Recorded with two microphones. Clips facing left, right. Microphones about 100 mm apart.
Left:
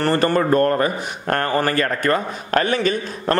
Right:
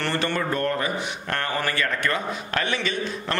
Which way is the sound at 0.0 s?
40° left (ahead or behind).